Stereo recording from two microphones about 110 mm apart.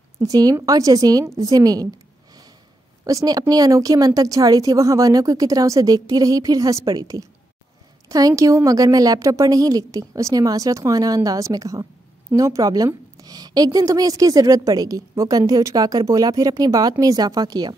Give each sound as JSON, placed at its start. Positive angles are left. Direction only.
{"t": 0.2, "sound": "a woman's voice", "side_deg": -30}
{"t": 3.1, "sound": "a woman's voice", "side_deg": -35}